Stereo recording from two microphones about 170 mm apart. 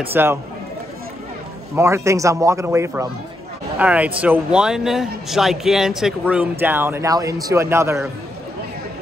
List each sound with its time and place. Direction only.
0.1 s speech: 15° right (ahead or behind)
1.8 s speech: 15° right (ahead or behind)